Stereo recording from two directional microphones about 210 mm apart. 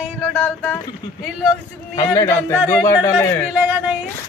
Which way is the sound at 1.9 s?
15° left (ahead or behind).